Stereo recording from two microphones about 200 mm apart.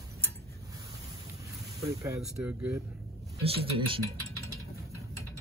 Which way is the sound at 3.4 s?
25° right (ahead or behind).